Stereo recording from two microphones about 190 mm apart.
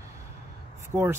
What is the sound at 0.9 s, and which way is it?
Speech, 10° right (ahead or behind).